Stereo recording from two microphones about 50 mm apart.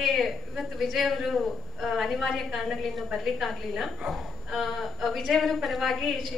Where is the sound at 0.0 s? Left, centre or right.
Centre.